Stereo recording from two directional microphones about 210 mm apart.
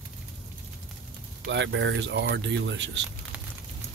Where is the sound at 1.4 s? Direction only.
60° right (ahead or behind).